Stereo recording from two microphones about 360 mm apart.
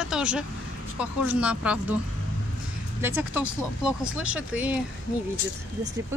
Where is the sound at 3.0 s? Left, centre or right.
Centre.